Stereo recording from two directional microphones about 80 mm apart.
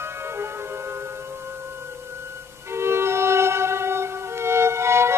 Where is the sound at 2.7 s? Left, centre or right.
Right.